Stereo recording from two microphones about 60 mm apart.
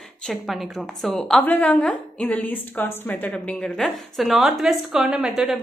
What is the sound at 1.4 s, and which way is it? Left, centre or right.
A woman's voice, left.